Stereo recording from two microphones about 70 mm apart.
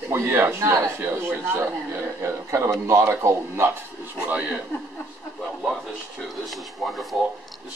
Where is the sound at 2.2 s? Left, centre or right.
Right.